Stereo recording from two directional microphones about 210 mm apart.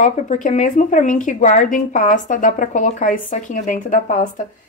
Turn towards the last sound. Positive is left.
turn(degrees=35)  # may be behind; listen again after turning